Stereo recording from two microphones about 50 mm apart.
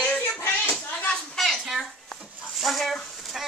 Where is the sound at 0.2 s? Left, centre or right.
Left.